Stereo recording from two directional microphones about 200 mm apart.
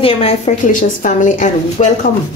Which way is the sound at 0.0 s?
30° left (ahead or behind).